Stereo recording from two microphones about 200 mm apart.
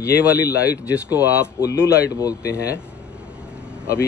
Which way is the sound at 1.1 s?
10° right (ahead or behind).